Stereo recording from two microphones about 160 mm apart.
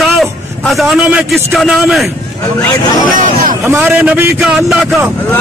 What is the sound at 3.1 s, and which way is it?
Hubbub, 55° right (ahead or behind).